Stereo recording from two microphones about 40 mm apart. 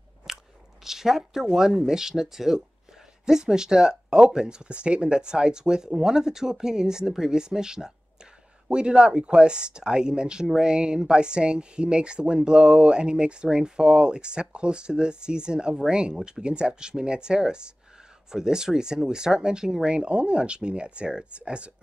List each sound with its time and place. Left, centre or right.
0.3 s biting: centre
0.8 s speech: centre; by 21.7 s right